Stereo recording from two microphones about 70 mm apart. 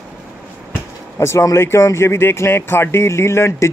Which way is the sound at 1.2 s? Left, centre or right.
Left.